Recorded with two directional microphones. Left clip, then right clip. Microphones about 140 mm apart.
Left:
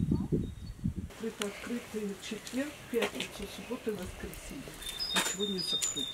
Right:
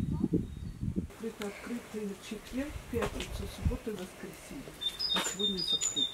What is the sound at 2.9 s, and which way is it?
Speech, centre (ahead or behind).